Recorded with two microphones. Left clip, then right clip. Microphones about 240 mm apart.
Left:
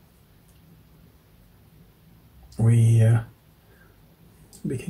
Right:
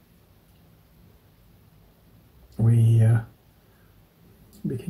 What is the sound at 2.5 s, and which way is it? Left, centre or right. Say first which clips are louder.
Speech: left 1 dB; centre.